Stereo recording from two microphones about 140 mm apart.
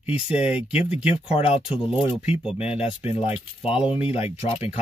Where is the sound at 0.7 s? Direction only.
45° left (ahead or behind).